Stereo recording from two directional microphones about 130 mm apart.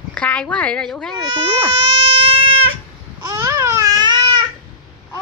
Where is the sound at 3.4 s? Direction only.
20° right (ahead or behind).